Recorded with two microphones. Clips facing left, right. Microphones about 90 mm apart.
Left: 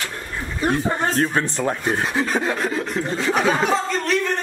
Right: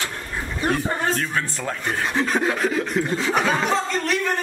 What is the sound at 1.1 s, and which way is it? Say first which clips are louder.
Speech: left 4 dB; 35° left (ahead or behind).